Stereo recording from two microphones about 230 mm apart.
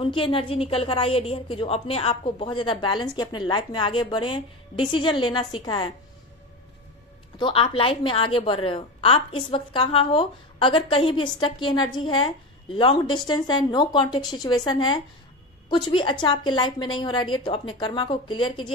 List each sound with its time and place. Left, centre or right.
0.0 s a woman's voice: left
7.3 s a woman's voice: left